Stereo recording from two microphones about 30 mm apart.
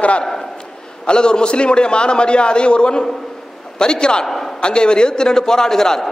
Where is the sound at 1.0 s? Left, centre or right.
Left.